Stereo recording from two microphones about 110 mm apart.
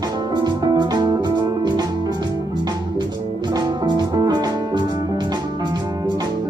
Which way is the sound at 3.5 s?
40° right (ahead or behind).